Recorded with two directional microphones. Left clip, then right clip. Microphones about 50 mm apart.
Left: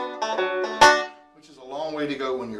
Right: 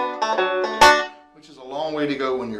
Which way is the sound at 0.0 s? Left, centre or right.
Right.